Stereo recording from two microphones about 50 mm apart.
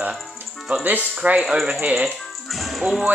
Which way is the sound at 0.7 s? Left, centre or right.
Right.